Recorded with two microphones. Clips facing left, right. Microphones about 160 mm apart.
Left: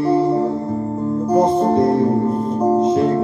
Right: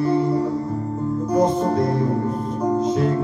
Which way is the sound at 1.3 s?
30° left (ahead or behind).